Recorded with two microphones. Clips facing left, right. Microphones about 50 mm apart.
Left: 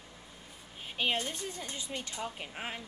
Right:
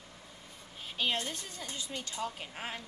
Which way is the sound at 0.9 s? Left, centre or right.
Left.